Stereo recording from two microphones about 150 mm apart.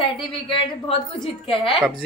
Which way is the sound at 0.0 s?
35° left (ahead or behind).